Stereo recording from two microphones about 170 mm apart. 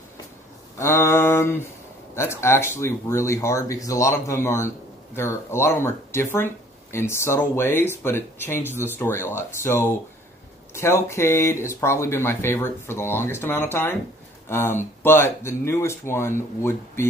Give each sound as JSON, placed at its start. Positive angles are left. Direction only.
{"t": 0.7, "sound": "speech", "side_deg": 15}